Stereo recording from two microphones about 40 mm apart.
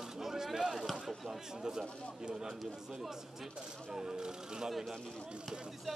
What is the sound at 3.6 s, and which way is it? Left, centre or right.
Speech, centre.